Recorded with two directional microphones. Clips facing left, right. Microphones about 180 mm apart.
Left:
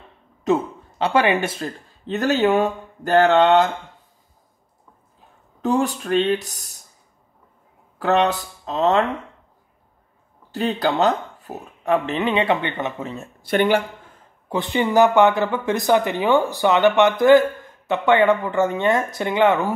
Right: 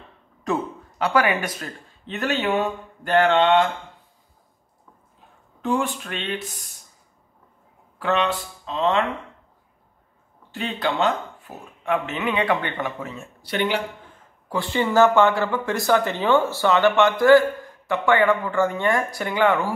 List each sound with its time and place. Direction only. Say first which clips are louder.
0.4 s speech: left 5 dB; 25° left (ahead or behind); by 3.7 s 40° left (ahead or behind)
5.6 s speech: left 3 dB; 40° left (ahead or behind)
8.0 s speech: left 4 dB; 40° left (ahead or behind)
10.5 s speech: left 5 dB; 40° left (ahead or behind)
13.2 s speech: left 6 dB; 50° left (ahead or behind)
14.5 s speech: left 2 dB; 20° left (ahead or behind)